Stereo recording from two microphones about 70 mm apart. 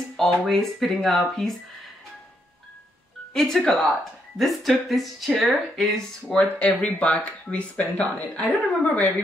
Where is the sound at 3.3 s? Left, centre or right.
Centre.